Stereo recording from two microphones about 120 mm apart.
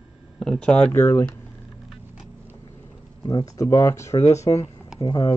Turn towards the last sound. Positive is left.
turn(degrees=35)  # may be behind; listen again after turning